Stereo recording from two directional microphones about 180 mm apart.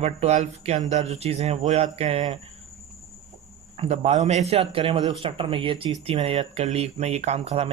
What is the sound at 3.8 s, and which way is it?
Speech, 35° right (ahead or behind).